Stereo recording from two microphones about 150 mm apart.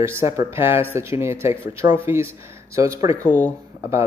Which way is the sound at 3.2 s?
10° left (ahead or behind).